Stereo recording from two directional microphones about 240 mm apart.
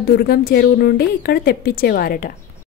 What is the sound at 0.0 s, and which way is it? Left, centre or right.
A woman's voice, left.